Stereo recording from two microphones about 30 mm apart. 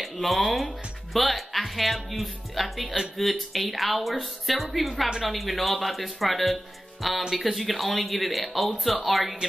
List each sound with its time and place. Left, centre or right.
0.0 s a woman's voice: centre